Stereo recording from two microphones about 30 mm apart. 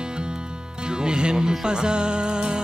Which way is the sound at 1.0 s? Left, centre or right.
Right.